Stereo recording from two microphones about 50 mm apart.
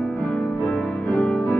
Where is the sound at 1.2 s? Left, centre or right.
Left.